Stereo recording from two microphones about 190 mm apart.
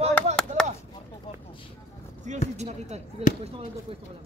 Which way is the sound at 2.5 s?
35° right (ahead or behind).